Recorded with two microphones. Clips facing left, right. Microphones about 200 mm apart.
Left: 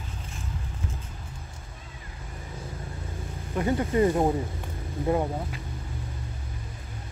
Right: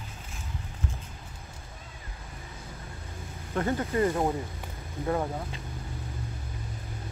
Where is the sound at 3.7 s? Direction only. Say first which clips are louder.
Left 5 dB; 20° left (ahead or behind).